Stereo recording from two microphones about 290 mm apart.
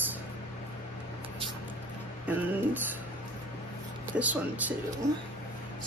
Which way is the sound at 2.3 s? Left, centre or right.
Centre.